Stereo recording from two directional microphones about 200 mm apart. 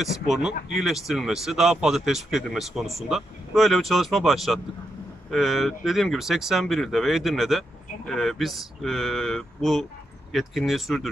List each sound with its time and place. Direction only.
0.0 s speech: centre (ahead or behind)